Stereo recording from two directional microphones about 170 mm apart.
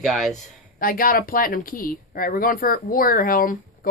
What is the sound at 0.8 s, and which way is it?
Speech, 55° left (ahead or behind).